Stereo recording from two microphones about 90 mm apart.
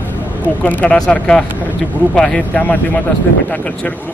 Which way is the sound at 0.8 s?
10° left (ahead or behind).